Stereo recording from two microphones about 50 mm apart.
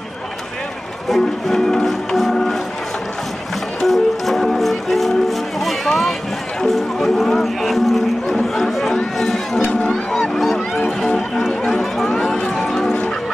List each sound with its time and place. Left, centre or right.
1.1 s speech: centre
1.9 s music: centre
3.8 s music: centre
9.6 s a sound: left
10.1 s a sound: centre
11.6 s music: centre